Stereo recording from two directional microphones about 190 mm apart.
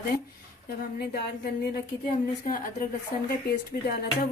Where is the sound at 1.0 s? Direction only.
55° left (ahead or behind).